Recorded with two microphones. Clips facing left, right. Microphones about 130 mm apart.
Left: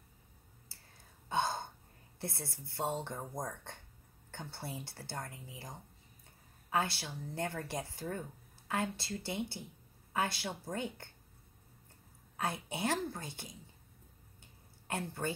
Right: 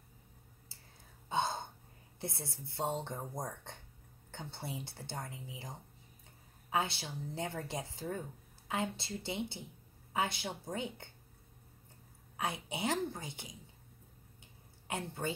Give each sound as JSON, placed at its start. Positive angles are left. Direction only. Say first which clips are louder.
{"t": 1.3, "sound": "gasp", "louder": "left 1 dB", "side_deg": -20}
{"t": 2.1, "sound": "a woman's voice", "louder": "even", "side_deg": -20}
{"t": 6.7, "sound": "a woman's voice", "louder": "left 1 dB", "side_deg": -20}
{"t": 12.4, "sound": "a woman's voice", "louder": "left 1 dB", "side_deg": -15}
{"t": 14.9, "sound": "speech", "louder": "left 1 dB", "side_deg": -20}